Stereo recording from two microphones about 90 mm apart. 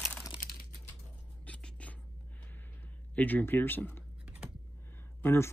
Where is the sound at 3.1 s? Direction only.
20° left (ahead or behind).